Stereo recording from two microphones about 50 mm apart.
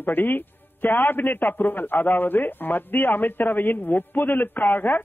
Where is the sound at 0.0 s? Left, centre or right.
Left.